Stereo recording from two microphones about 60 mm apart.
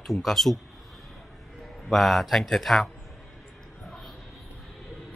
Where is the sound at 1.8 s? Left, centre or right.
Centre.